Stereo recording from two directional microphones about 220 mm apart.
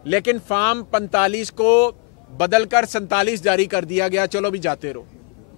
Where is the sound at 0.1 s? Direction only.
10° left (ahead or behind).